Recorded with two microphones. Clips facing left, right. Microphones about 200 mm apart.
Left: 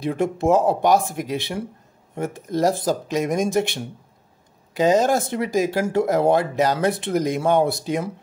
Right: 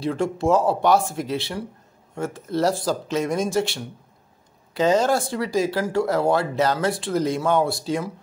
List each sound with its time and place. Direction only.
0.0 s speech: 20° left (ahead or behind)